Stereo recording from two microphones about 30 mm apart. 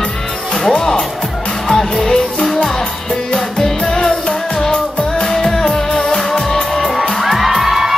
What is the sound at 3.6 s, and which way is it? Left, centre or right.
Music, centre.